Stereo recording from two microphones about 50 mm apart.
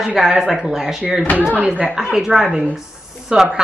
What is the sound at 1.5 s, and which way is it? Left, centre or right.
Speech, right.